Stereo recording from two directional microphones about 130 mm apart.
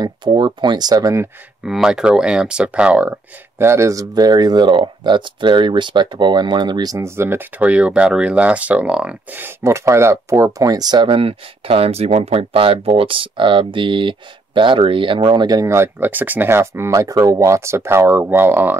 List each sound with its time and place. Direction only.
0.0 s speech: 40° right (ahead or behind)
1.6 s speech: 5° right (ahead or behind)
3.6 s speech: 20° right (ahead or behind)